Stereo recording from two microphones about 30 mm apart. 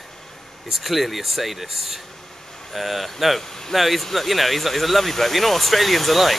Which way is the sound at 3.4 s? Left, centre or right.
Centre.